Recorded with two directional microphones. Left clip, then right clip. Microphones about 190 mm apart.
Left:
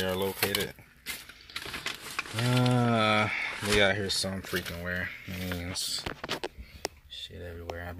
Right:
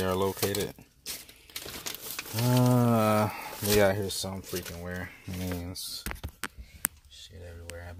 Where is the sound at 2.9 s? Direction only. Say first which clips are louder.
Left 1 dB; 25° right (ahead or behind).